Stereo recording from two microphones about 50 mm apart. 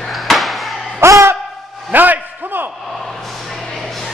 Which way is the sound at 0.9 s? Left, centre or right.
Right.